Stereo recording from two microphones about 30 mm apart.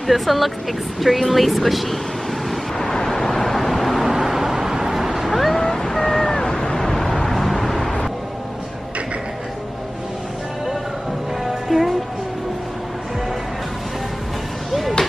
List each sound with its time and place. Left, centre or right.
0.0 s speech: centre
2.8 s vehicle: centre
4.1 s vehicle: centre
5.3 s cat: centre
5.6 s vehicle: centre
6.8 s vehicle: centre
11.4 s music: centre
14.7 s a sound: centre